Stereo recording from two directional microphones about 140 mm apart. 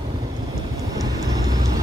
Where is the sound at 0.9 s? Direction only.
25° right (ahead or behind).